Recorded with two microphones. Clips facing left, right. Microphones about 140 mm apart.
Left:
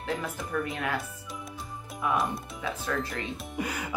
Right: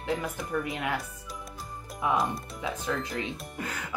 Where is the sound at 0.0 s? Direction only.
20° right (ahead or behind).